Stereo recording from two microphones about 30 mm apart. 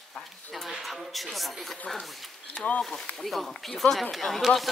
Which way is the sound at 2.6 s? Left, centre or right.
Left.